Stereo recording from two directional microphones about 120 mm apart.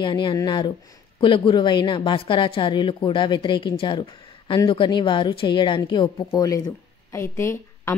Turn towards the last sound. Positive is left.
turn(degrees=20)  # may be behind; listen again after turning